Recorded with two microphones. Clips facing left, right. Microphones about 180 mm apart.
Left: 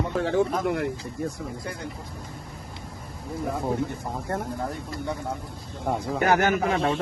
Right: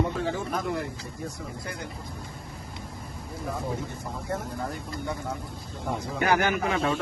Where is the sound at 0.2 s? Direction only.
70° left (ahead or behind).